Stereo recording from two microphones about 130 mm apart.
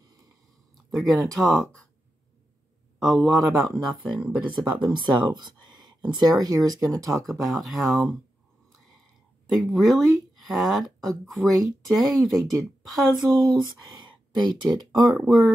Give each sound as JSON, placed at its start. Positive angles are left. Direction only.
{"t": 0.7, "sound": "speech", "side_deg": 0}
{"t": 3.0, "sound": "speech", "side_deg": 0}
{"t": 4.4, "sound": "speech", "side_deg": -35}
{"t": 7.2, "sound": "speech", "side_deg": 0}
{"t": 9.7, "sound": "speech", "side_deg": 0}
{"t": 13.5, "sound": "speech", "side_deg": -35}
{"t": 15.0, "sound": "speech", "side_deg": 0}